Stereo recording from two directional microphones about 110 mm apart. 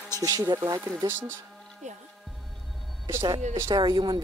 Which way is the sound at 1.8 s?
90° right.